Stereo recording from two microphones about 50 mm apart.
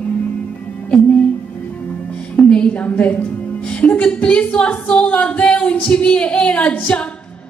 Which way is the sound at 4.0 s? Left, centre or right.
Left.